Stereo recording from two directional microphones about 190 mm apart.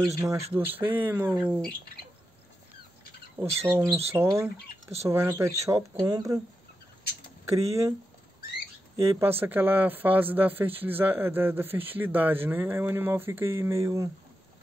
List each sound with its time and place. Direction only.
0.0 s speech: 15° right (ahead or behind)
3.4 s speech: 30° right (ahead or behind)
3.7 s speech: 10° right (ahead or behind)
7.5 s speech: 15° right (ahead or behind)
8.9 s speech: 15° right (ahead or behind)